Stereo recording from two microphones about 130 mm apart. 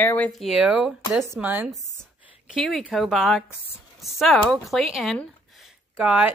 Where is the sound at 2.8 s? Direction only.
Centre (ahead or behind).